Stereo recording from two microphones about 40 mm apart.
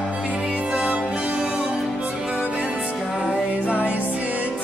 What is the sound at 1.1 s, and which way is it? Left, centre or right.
Music, right.